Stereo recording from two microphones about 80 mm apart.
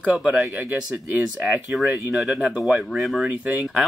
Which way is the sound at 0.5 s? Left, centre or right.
Right.